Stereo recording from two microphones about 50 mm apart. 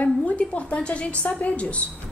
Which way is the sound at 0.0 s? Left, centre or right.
Left.